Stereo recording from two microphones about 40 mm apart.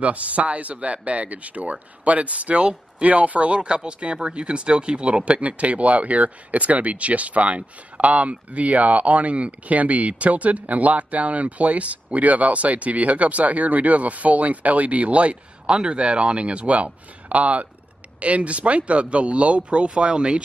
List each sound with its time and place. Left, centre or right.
0.0 s speech: right